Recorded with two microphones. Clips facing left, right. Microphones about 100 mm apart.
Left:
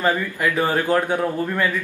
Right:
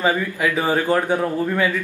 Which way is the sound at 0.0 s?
10° right (ahead or behind).